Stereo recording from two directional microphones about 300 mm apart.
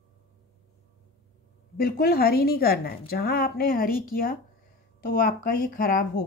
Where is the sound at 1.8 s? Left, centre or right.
Left.